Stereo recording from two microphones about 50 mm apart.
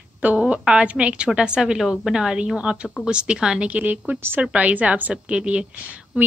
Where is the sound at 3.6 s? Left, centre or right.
Right.